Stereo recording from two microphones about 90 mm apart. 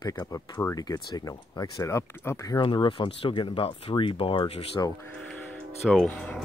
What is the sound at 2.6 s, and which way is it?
Speech, 60° left (ahead or behind).